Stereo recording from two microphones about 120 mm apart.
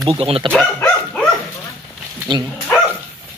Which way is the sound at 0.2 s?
50° right (ahead or behind).